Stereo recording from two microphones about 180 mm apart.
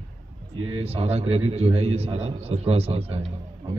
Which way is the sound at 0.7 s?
35° right (ahead or behind).